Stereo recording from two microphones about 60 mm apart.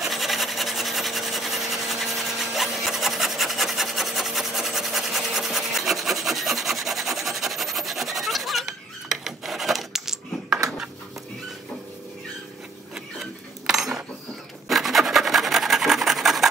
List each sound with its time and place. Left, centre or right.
0.0 s a sound: centre
12.9 s cutlery: centre
14.7 s filing: centre